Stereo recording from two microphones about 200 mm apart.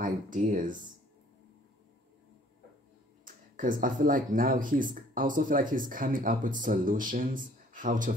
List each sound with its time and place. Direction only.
0.0 s speech: 40° right (ahead or behind)
3.5 s speech: 40° right (ahead or behind)